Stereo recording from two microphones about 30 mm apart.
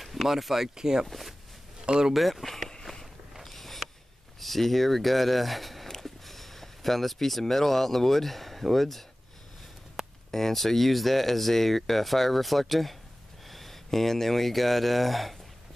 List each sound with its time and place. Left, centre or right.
0.0 s speech: centre
0.7 s speech: centre
1.0 s speech: centre
1.9 s speech: right
2.1 s speech: centre
2.8 s walk: centre
3.4 s a sound: centre
4.4 s speech: centre
10.0 s a sound: centre
10.3 s speech: centre